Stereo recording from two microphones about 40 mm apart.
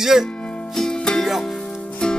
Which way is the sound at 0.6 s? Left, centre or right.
Centre.